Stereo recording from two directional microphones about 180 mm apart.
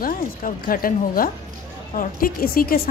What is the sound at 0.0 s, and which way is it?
A woman's voice, 50° left (ahead or behind).